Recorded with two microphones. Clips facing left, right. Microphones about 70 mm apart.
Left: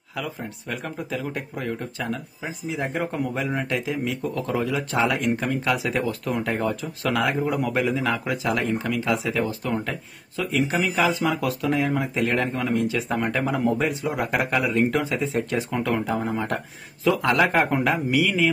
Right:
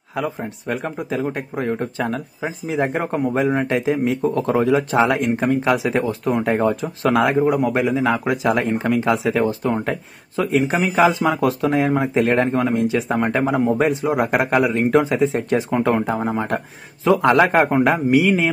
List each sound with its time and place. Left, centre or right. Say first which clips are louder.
0.1 s speech: right 7 dB; right